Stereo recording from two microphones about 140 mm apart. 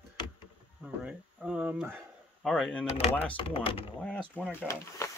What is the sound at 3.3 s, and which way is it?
Speech, 40° left (ahead or behind).